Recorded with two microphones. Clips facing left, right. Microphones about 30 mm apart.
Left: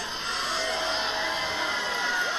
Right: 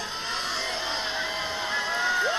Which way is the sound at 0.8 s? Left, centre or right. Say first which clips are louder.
Left 1 dB; centre.